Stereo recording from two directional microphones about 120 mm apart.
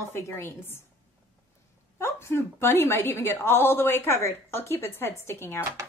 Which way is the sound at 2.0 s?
20° left (ahead or behind).